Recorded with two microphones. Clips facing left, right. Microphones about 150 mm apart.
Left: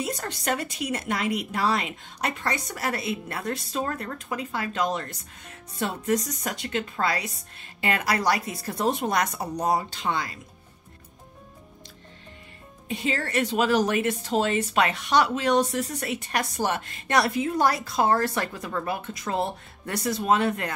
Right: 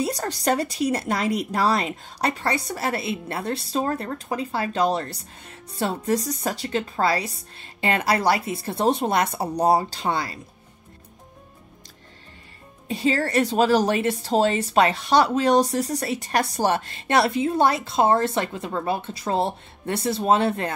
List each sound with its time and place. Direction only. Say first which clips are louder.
0.0 s speech: right 5 dB; 35° right (ahead or behind)
12.8 s speech: right 6 dB; 35° right (ahead or behind)